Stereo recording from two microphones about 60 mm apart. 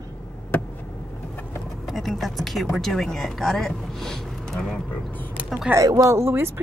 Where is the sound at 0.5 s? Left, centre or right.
Left.